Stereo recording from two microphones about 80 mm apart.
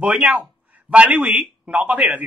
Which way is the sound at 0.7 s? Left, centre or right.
Centre.